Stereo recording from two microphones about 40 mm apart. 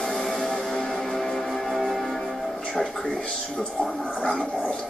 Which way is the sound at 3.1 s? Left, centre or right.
Left.